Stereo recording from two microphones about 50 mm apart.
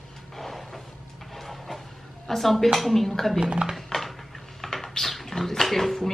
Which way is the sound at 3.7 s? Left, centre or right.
Centre.